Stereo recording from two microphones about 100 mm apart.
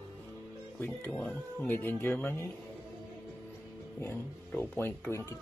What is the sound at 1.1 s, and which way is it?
Speech, 10° left (ahead or behind).